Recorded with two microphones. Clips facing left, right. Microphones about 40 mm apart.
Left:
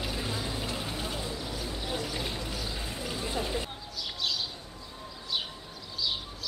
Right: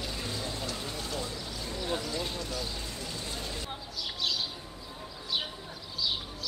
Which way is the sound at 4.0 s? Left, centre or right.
Centre.